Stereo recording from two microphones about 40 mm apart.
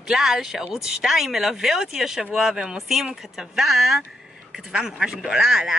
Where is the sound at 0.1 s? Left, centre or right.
Centre.